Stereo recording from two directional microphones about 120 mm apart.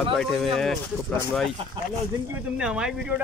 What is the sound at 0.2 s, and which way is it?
Speech, 5° left (ahead or behind).